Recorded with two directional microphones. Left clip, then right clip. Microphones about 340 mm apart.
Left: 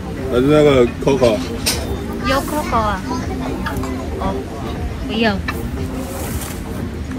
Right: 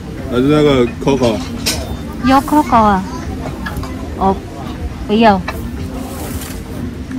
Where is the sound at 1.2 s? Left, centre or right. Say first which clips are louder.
Left 1 dB; right.